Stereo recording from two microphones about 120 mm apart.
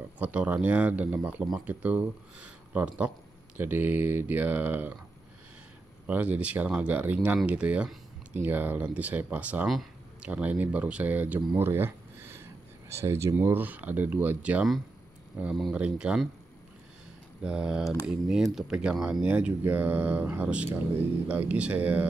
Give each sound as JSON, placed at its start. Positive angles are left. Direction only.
{"t": 0.2, "sound": "speech", "side_deg": -10}
{"t": 6.0, "sound": "speech", "side_deg": -10}
{"t": 9.7, "sound": "a sound", "side_deg": 0}
{"t": 10.3, "sound": "speech", "side_deg": -15}
{"t": 17.4, "sound": "speech", "side_deg": -10}